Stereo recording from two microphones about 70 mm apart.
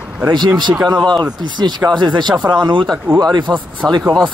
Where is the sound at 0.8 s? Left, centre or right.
Right.